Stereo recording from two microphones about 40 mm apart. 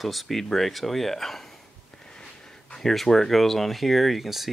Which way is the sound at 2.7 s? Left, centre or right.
Centre.